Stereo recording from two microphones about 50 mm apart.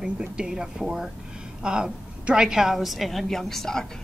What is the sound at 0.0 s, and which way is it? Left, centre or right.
A woman's voice, centre.